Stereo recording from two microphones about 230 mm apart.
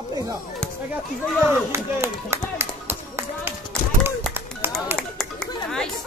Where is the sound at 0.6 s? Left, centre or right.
Centre.